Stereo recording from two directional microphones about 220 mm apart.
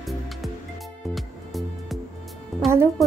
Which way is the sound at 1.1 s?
Centre (ahead or behind).